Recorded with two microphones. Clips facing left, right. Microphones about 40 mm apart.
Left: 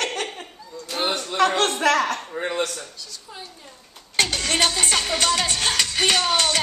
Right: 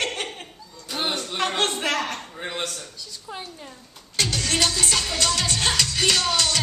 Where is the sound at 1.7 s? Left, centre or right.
Left.